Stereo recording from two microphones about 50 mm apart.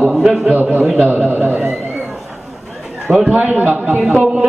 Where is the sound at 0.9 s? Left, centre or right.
Right.